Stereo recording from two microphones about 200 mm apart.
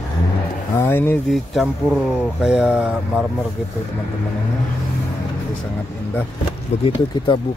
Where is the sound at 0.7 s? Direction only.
10° left (ahead or behind).